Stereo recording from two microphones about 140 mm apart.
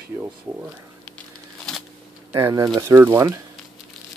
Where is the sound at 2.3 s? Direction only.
25° right (ahead or behind).